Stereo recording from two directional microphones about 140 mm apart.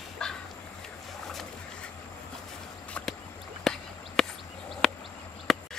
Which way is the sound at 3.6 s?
Centre (ahead or behind).